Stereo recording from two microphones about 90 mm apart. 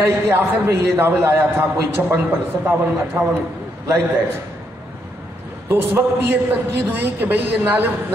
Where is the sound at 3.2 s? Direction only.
30° right (ahead or behind).